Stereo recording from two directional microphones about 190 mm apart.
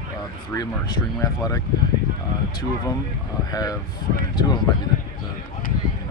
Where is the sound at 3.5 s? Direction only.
20° left (ahead or behind).